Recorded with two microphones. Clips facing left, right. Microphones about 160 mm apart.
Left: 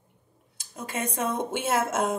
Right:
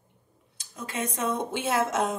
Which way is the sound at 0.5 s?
50° left (ahead or behind).